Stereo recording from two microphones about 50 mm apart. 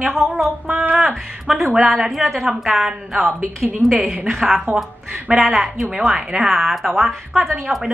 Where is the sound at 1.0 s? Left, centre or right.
Centre.